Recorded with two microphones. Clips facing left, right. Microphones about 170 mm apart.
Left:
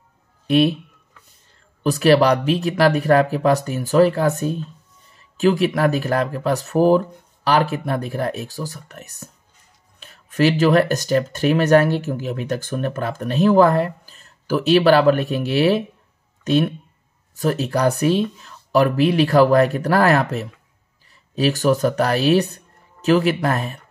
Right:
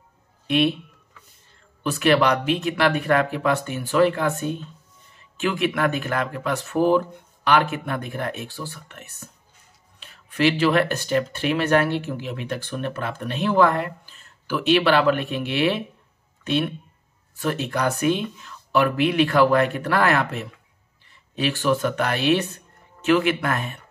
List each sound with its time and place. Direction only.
0.5 s speech: 35° left (ahead or behind)
1.8 s speech: 35° left (ahead or behind)